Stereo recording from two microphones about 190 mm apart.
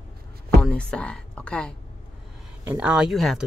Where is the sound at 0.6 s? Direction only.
5° left (ahead or behind).